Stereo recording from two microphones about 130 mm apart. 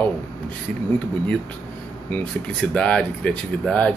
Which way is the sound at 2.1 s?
10° left (ahead or behind).